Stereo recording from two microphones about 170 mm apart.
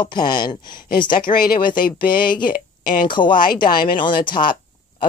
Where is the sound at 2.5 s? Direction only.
55° left (ahead or behind).